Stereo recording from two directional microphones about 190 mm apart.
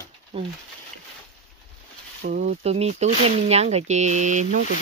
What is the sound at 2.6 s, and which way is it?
Speech, 35° right (ahead or behind).